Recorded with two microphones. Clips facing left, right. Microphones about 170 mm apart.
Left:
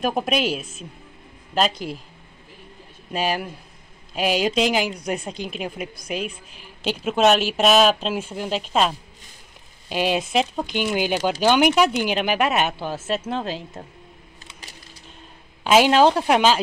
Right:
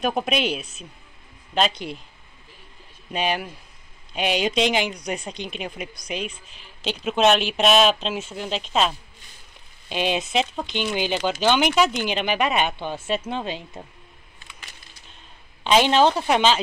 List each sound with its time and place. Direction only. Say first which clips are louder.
0.0 s speech: left 1 dB; centre (ahead or behind)
3.1 s speech: left 1 dB; centre (ahead or behind)
14.4 s a sound: left 1 dB; 35° left (ahead or behind)
15.6 s speech: left 2 dB; 5° left (ahead or behind)